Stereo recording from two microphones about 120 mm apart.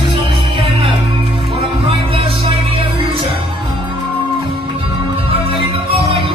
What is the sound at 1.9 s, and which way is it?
Music, 50° right (ahead or behind).